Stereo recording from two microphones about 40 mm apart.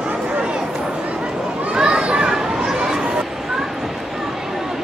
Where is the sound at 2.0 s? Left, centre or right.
Right.